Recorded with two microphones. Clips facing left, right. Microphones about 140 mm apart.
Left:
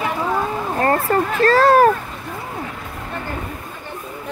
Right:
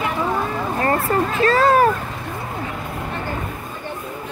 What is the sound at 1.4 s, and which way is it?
Speech, 35° left (ahead or behind).